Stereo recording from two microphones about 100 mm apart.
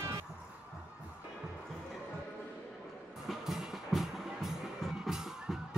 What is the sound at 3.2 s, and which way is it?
Music, 5° right (ahead or behind).